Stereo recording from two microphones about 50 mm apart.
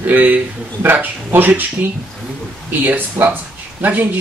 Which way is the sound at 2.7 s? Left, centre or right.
Right.